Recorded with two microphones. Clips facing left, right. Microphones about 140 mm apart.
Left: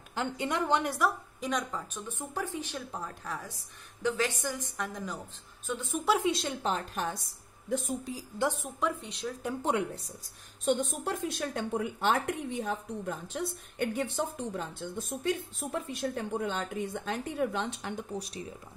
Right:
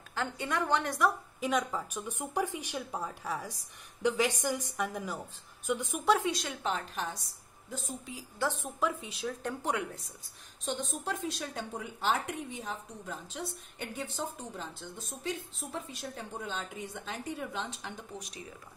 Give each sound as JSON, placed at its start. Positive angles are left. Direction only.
{"t": 0.1, "sound": "a woman's voice", "side_deg": 20}
{"t": 0.8, "sound": "a woman's voice", "side_deg": 0}
{"t": 6.2, "sound": "a woman's voice", "side_deg": 25}
{"t": 8.6, "sound": "speech", "side_deg": 0}
{"t": 9.6, "sound": "a woman's voice", "side_deg": 25}
{"t": 10.6, "sound": "a woman's voice", "side_deg": 50}